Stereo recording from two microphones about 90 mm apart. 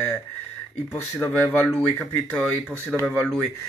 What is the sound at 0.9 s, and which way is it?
Speech, 20° left (ahead or behind).